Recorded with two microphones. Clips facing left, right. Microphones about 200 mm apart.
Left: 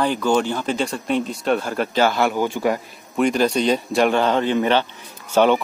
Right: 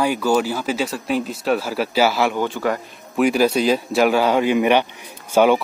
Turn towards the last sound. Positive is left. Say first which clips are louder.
# right 1 dB
turn(degrees=-10)  # may be behind; listen again after turning